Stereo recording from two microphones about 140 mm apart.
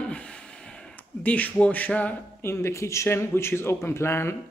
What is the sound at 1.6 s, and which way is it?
Speech, 10° left (ahead or behind).